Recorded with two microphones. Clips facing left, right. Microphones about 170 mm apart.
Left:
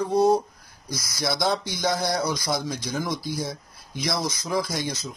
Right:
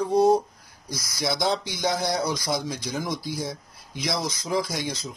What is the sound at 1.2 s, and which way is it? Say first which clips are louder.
Speech: even; 15° right (ahead or behind).